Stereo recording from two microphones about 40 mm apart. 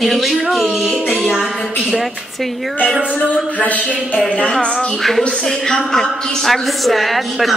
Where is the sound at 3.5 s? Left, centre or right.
Left.